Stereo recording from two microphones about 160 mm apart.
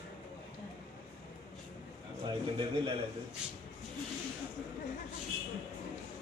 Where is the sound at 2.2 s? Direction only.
30° right (ahead or behind).